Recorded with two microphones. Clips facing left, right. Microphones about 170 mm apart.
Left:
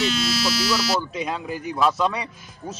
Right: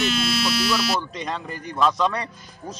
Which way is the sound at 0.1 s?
55° right (ahead or behind).